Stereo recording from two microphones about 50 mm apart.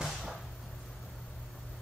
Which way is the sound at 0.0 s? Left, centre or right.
Centre.